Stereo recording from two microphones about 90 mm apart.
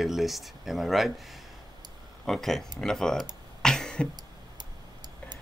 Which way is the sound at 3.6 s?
10° left (ahead or behind).